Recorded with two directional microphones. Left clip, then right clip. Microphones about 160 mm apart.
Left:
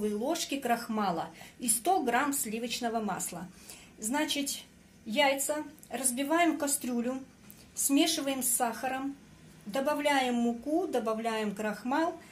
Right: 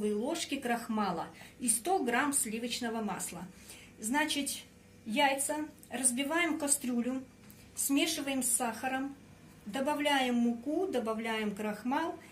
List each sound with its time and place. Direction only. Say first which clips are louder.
0.0 s a woman's voice: left 2 dB; 40° left (ahead or behind)